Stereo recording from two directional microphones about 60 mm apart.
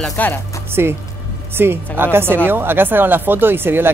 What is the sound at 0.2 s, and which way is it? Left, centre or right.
Speech, left.